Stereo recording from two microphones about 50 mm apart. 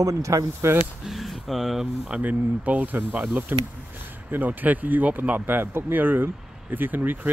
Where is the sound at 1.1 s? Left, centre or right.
Centre.